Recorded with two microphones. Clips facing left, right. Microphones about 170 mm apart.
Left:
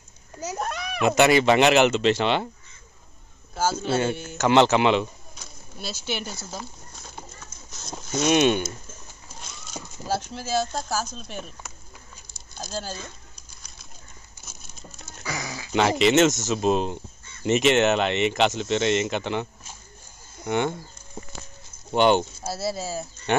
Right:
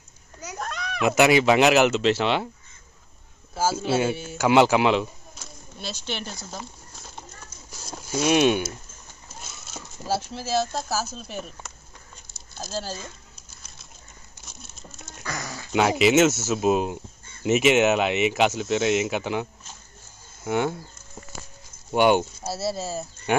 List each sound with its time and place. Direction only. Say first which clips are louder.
0.4 s a child's voice: left 5 dB; 25° left (ahead or behind)
0.7 s a sound: left 2 dB; 10° left (ahead or behind)
1.0 s speech: even; 5° right (ahead or behind)
3.5 s speech: right 1 dB; 5° right (ahead or behind)
14.4 s crumpling: even; centre (ahead or behind)
17.4 s speech: right 1 dB; 5° right (ahead or behind)
20.4 s speech: even; 5° right (ahead or behind)
21.9 s speech: even; 10° right (ahead or behind)